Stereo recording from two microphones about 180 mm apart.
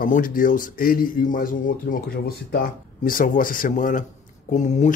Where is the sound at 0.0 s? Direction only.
50° left (ahead or behind).